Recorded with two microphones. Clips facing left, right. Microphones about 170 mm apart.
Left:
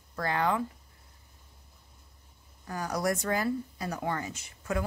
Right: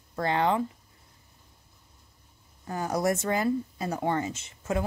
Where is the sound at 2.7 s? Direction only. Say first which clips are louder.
Right 3 dB; 25° right (ahead or behind).